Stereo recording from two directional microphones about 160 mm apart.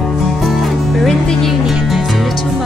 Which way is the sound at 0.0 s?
Centre (ahead or behind).